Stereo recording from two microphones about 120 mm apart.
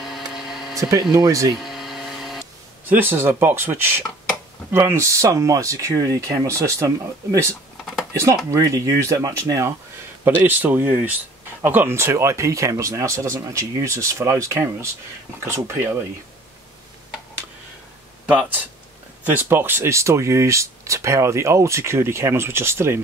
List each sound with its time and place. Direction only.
0.0 s a sound: centre (ahead or behind)
0.7 s speech: 30° right (ahead or behind)
1.5 s a sound: centre (ahead or behind)
2.8 s speech: 15° right (ahead or behind)
10.2 s speech: 15° right (ahead or behind)
18.2 s speech: 10° right (ahead or behind)